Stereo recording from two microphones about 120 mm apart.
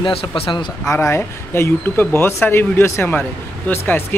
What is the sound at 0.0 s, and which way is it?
Speech, 45° left (ahead or behind).